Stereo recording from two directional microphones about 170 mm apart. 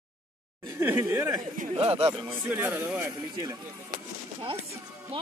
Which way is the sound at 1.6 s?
35° right (ahead or behind).